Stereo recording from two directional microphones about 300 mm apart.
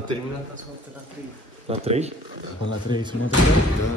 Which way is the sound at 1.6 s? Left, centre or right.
Right.